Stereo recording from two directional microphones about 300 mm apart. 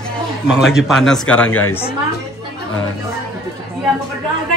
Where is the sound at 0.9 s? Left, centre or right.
Centre.